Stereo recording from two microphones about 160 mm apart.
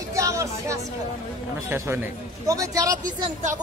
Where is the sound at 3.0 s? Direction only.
50° right (ahead or behind).